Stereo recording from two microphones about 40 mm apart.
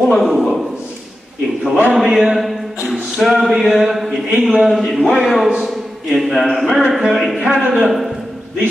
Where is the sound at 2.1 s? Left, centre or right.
Centre.